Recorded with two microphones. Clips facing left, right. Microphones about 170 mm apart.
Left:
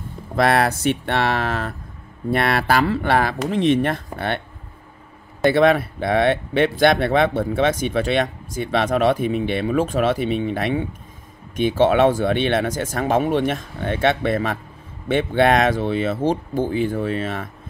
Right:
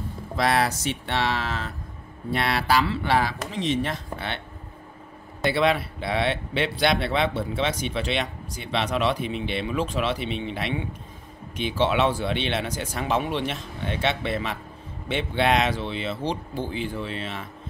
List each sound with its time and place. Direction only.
0.4 s speech: 55° left (ahead or behind)
5.4 s speech: 50° left (ahead or behind)